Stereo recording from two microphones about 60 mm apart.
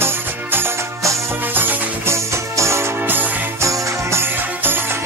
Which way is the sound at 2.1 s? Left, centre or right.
Right.